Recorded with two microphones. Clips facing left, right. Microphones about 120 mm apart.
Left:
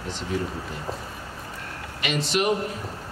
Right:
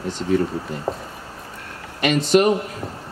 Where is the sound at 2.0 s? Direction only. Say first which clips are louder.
Right 9 dB; 45° right (ahead or behind).